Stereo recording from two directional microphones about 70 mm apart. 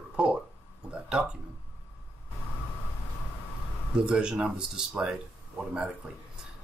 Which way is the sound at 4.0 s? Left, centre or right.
Centre.